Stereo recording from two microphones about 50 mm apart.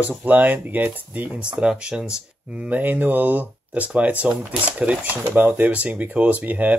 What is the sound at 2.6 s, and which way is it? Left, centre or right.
Speech, right.